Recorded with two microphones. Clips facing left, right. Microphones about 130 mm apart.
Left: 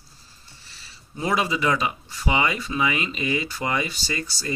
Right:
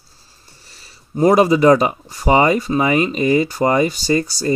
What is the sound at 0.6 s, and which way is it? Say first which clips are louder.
Speech: right 2 dB; 45° right (ahead or behind).